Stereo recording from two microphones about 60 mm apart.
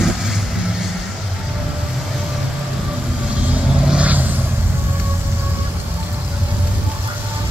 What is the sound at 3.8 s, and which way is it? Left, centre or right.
Vehicle, right.